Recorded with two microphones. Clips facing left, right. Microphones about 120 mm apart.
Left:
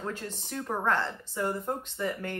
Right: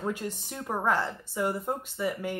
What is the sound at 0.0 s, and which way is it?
Speech, 15° right (ahead or behind).